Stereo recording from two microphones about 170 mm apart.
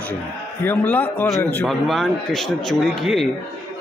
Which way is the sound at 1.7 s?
Centre (ahead or behind).